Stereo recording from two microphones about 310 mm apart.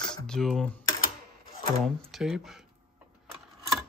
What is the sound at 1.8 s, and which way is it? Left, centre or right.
Speech, centre.